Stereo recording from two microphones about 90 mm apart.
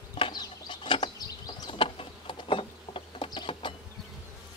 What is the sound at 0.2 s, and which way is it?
Chicken, 55° left (ahead or behind).